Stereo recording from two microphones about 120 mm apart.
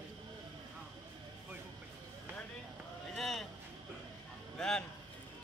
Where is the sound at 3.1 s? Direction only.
Centre (ahead or behind).